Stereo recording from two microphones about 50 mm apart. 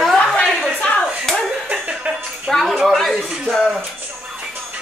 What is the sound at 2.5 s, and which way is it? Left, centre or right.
Speech, centre.